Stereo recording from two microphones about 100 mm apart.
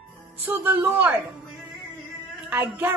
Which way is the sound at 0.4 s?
20° right (ahead or behind).